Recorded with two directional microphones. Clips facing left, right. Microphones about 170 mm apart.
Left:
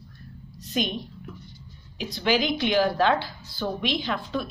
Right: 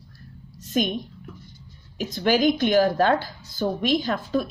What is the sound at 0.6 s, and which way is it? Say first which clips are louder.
A woman's voice: right 4 dB; 50° right (ahead or behind).